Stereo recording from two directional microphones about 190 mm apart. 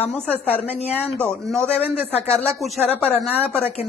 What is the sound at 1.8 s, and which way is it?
Speech, 30° left (ahead or behind).